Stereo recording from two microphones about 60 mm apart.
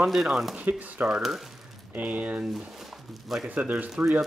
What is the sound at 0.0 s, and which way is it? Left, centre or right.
Speech, centre.